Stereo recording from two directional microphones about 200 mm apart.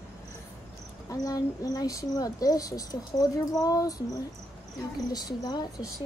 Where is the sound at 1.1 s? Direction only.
20° left (ahead or behind).